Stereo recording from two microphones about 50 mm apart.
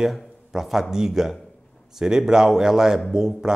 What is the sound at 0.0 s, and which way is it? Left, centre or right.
Speech, centre.